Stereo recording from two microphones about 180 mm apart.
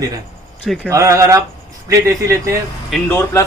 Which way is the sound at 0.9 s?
15° right (ahead or behind).